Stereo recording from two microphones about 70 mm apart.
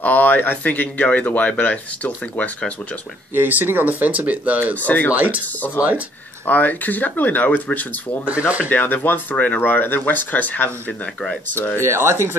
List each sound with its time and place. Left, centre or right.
0.0 s speech: left
3.3 s speech: right
4.7 s speech: left
5.1 s speech: right
6.4 s speech: left
10.9 s speech: centre
11.5 s speech: left
11.8 s speech: right